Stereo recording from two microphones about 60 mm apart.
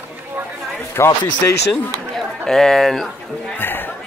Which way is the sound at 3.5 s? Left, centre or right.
Left.